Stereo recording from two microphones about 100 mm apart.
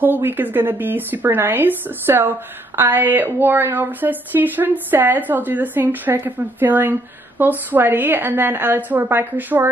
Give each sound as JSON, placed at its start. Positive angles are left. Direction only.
{"t": 0.0, "sound": "a woman's voice", "side_deg": -20}